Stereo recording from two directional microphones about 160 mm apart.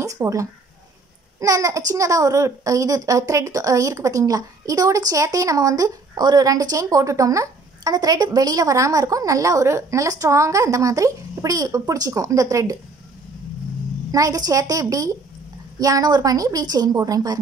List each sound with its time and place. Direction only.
0.0 s a child's voice: 20° right (ahead or behind)
14.1 s a child's voice: 20° right (ahead or behind)